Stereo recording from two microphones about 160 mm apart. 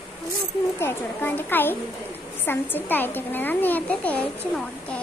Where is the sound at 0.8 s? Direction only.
10° left (ahead or behind).